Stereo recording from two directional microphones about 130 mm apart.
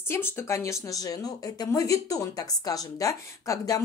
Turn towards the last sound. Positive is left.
turn(degrees=25)  # may be behind; listen again after turning